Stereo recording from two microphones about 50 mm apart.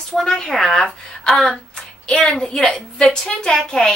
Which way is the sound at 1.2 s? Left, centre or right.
Centre.